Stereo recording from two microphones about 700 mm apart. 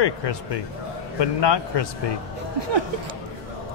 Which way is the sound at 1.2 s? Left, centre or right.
Left.